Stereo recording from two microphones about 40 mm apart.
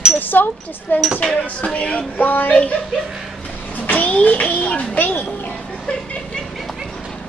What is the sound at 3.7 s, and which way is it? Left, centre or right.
A child's voice, left.